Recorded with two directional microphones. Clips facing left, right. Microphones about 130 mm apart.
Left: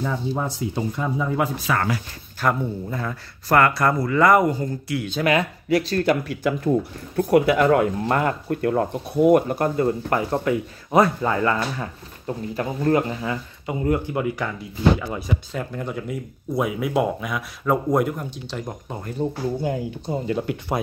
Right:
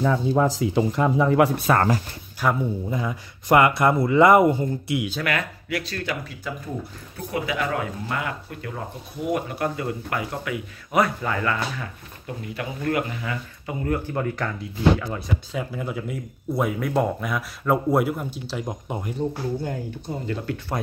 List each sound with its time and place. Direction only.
0.0 s speech: 90° right; by 1.5 s 70° right (ahead or behind)
1.7 s speech: 40° right (ahead or behind)
2.4 s speech: 10° right (ahead or behind)
5.2 s speech: 30° left (ahead or behind)
6.2 s speech: 70° left (ahead or behind)
7.2 s speech: 60° left (ahead or behind); by 18.8 s 5° right (ahead or behind)
20.1 s speech: 20° left (ahead or behind)